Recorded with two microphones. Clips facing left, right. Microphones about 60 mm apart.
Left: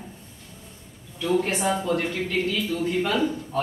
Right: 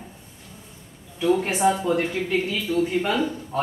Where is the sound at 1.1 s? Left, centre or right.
Centre.